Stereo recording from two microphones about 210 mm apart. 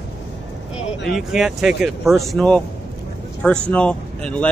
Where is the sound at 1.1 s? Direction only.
Centre (ahead or behind).